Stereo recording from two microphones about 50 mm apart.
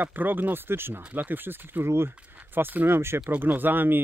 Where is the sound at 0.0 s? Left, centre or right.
Right.